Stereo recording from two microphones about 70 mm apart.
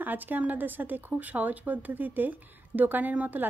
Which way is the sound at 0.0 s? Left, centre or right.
Right.